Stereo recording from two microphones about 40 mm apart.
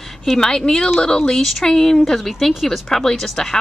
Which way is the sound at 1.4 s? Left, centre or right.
Centre.